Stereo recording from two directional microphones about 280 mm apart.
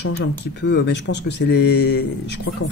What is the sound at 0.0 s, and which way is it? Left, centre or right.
Speech, left.